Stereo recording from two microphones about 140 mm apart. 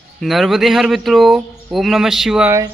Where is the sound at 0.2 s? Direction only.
Centre (ahead or behind).